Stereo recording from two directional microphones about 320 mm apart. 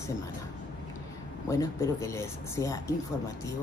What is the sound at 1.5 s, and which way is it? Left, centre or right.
Speech, centre.